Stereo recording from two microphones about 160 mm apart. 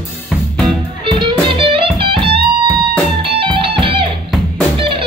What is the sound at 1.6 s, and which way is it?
Music, 30° right (ahead or behind).